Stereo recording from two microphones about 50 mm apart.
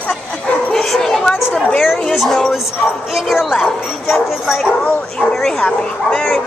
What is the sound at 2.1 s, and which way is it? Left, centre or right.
A man's voice, centre.